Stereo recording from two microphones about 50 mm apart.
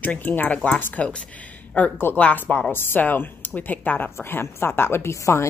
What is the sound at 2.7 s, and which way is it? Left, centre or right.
Speech, left.